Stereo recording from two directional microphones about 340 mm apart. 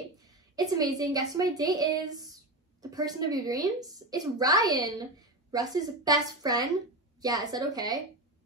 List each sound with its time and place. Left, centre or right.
0.6 s a woman's voice: centre